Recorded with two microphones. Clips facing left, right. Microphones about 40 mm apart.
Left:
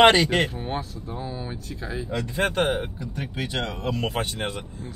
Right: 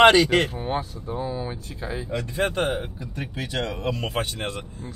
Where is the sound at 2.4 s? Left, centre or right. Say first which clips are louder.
Left 1 dB; left.